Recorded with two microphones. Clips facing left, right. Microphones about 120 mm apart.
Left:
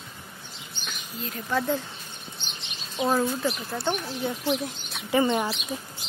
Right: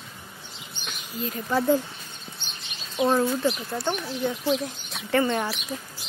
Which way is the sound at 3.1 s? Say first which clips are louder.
Right 1 dB; centre (ahead or behind).